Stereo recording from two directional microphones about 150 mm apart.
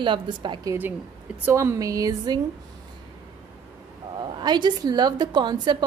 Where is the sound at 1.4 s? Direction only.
20° right (ahead or behind).